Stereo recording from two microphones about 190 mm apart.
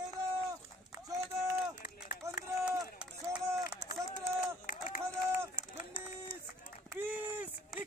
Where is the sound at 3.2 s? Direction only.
10° right (ahead or behind).